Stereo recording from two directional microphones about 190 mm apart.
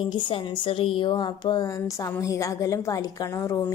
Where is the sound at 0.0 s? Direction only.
25° left (ahead or behind).